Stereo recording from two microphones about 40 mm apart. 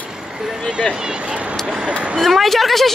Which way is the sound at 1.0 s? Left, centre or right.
Right.